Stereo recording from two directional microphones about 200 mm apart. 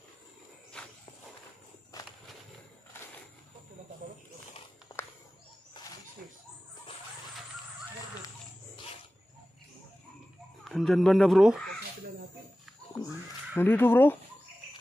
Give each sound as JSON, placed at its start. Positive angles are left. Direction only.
{"t": 0.7, "sound": "walk", "side_deg": 5}
{"t": 1.9, "sound": "walk", "side_deg": 15}
{"t": 4.9, "sound": "a sound", "side_deg": 15}
{"t": 10.6, "sound": "speech", "side_deg": 0}
{"t": 13.6, "sound": "speech", "side_deg": 10}